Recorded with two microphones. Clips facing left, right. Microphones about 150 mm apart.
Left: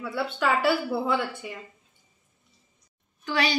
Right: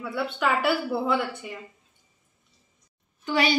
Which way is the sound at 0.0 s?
5° left (ahead or behind).